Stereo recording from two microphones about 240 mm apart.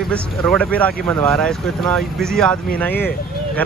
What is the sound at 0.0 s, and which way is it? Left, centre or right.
A man's voice, centre.